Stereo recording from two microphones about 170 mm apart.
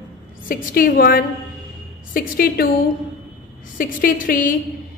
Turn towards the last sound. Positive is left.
turn(degrees=50)  # may be behind; listen again after turning